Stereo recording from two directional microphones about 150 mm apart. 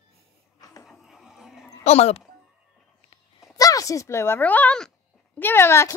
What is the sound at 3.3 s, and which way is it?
Speech, 25° left (ahead or behind).